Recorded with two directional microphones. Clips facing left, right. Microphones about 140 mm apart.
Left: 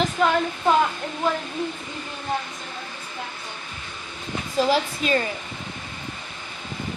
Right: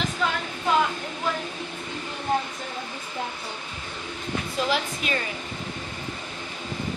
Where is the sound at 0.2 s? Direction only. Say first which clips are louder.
Left 6 dB; 50° left (ahead or behind).